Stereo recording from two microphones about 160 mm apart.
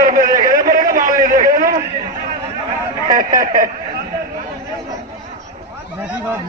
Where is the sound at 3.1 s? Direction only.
60° right (ahead or behind).